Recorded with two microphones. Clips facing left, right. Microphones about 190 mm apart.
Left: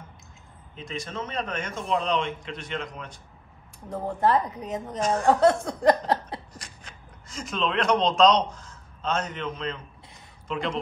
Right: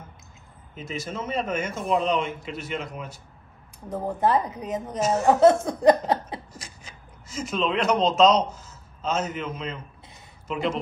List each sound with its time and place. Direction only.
0.7 s a man's voice: 5° right (ahead or behind)
4.2 s a woman's voice: 20° right (ahead or behind)
4.8 s a man's voice: 5° right (ahead or behind)
5.7 s a sound: 20° right (ahead or behind)
6.5 s a man's voice: centre (ahead or behind)